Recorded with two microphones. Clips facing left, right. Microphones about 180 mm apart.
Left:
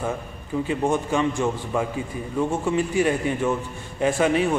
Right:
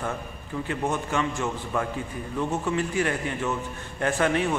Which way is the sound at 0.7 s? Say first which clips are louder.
Left 5 dB; 15° left (ahead or behind).